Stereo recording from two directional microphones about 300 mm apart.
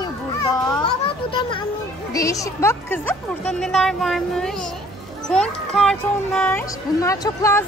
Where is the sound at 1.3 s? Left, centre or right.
Centre.